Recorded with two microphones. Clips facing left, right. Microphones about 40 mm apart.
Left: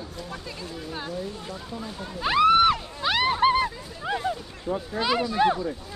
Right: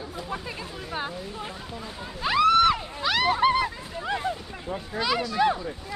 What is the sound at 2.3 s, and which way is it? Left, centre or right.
Speech, centre.